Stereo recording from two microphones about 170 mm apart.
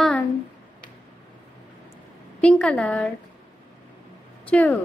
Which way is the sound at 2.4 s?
5° left (ahead or behind).